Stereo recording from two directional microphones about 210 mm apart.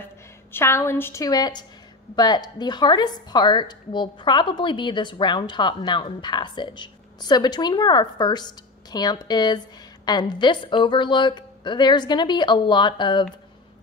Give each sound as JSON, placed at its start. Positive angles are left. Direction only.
{"t": 0.0, "sound": "a woman's voice", "side_deg": 10}